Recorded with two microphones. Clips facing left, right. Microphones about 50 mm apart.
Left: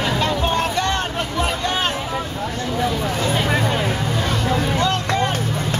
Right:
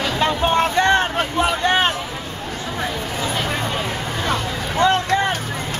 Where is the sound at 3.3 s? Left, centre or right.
Centre.